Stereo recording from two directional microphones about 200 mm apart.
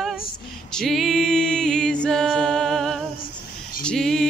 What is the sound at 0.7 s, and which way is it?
Music, centre (ahead or behind).